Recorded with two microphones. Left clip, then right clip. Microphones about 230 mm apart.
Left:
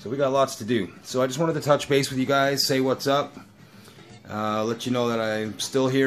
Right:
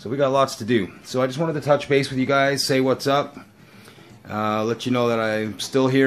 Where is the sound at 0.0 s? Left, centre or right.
Centre.